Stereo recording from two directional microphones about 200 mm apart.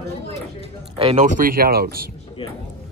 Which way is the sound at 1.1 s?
40° right (ahead or behind).